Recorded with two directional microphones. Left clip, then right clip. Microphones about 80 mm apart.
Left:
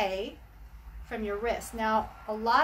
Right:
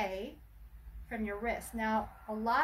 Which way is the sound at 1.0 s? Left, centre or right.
Left.